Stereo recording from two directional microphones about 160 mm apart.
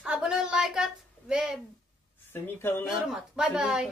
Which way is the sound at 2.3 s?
15° left (ahead or behind).